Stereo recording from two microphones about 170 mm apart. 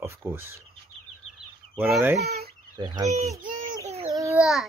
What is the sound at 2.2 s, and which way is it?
Speech, 65° right (ahead or behind).